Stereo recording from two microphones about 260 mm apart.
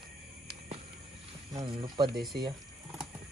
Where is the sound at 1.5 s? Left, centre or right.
Centre.